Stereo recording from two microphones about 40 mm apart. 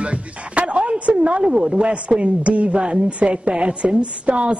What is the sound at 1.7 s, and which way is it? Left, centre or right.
Speech, right.